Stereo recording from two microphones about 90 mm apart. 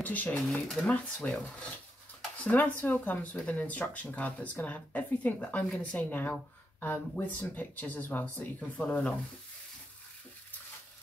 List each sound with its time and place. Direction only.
0.0 s speech: 20° left (ahead or behind)
0.5 s speech: 5° left (ahead or behind)